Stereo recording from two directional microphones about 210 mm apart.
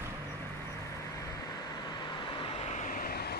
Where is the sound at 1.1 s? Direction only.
15° left (ahead or behind).